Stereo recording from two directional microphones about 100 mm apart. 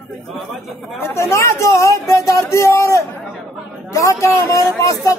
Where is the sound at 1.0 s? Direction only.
30° left (ahead or behind).